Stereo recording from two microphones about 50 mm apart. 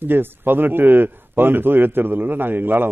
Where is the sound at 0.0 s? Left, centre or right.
Right.